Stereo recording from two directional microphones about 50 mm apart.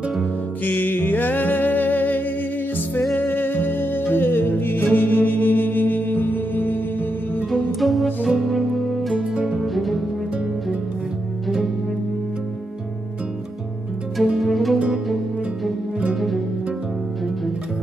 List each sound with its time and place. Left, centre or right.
0.7 s music: left
7.5 s music: centre
9.3 s music: centre
9.6 s music: centre
11.4 s music: centre
14.1 s music: centre